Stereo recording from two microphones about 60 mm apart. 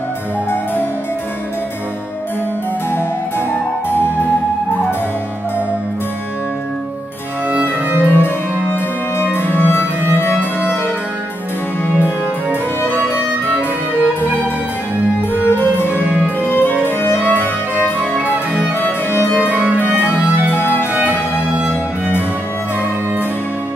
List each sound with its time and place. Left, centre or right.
3.9 s music: left
8.0 s harpsichord: left
9.2 s music: left
15.1 s music: left
17.7 s music: right
19.2 s music: left
19.5 s music: right
20.0 s music: left